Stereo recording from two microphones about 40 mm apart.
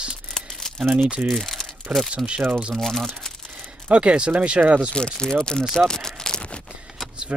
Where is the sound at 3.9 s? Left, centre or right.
Right.